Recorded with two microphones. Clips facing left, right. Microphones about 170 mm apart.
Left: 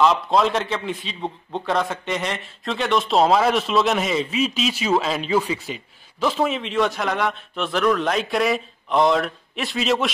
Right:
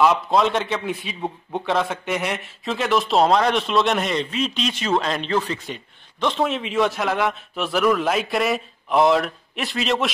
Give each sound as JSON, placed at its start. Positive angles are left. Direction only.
{"t": 0.0, "sound": "a man's voice", "side_deg": -5}